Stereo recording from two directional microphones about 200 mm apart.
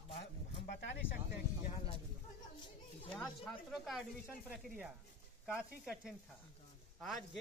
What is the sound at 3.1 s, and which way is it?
Speech, centre (ahead or behind).